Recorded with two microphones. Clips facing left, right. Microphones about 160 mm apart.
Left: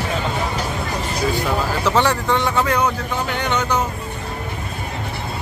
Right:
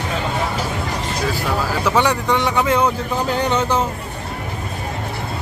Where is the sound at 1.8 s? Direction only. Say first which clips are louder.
Right 1 dB; 15° right (ahead or behind).